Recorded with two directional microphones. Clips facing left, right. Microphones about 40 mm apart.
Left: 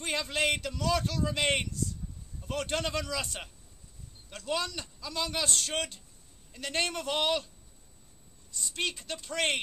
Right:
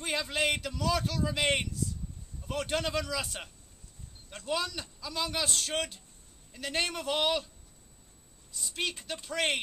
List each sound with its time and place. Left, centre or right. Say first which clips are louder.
0.0 s speech: even; centre
8.5 s a woman's voice: left 1 dB; centre